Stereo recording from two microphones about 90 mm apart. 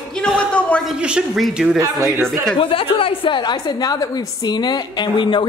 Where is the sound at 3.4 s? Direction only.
55° left (ahead or behind).